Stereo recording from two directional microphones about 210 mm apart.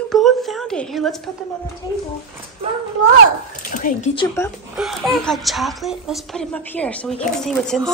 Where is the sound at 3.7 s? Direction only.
45° left (ahead or behind).